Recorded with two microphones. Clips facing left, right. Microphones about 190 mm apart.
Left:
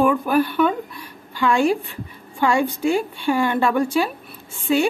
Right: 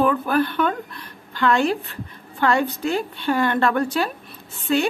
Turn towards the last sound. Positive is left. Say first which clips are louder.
# left 2 dB
turn(degrees=10)  # may be behind; listen again after turning